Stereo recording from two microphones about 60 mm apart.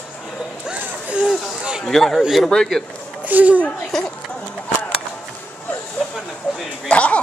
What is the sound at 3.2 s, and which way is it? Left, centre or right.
Speech, right.